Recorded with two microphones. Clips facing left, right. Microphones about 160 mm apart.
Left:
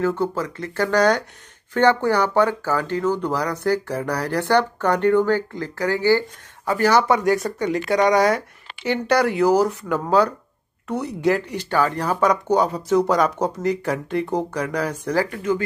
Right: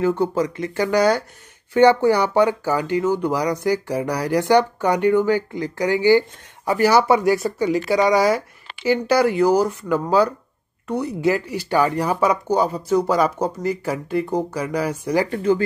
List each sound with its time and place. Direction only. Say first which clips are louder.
0.0 s speech: right 3 dB; 15° right (ahead or behind)
15.2 s speech: right 4 dB; 30° right (ahead or behind)